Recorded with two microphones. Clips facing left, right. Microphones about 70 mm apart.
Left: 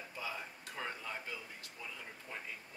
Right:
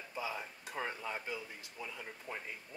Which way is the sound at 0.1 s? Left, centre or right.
Centre.